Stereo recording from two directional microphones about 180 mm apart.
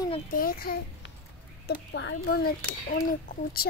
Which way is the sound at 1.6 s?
90° left.